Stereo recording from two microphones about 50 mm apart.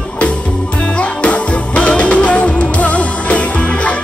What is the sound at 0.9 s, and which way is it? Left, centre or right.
Music, left.